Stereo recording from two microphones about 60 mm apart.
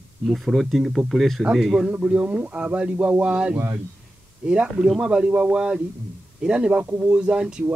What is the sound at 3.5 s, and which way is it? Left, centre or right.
Speech, right.